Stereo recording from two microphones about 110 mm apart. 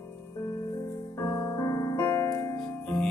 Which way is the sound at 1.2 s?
35° left (ahead or behind).